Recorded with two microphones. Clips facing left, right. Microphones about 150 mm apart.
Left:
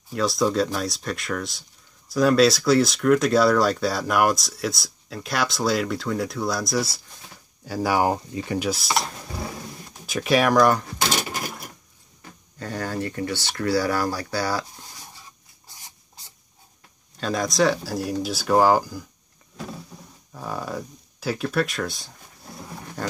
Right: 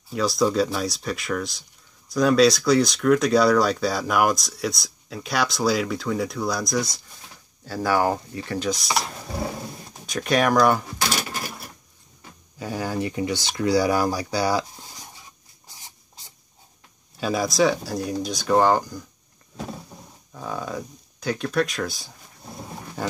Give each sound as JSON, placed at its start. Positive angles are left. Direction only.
{"t": 0.1, "sound": "speech", "side_deg": 0}
{"t": 10.0, "sound": "speech", "side_deg": 5}
{"t": 12.5, "sound": "speech", "side_deg": -10}
{"t": 15.7, "sound": "dog", "side_deg": -20}
{"t": 17.2, "sound": "speech", "side_deg": -5}
{"t": 20.3, "sound": "speech", "side_deg": 5}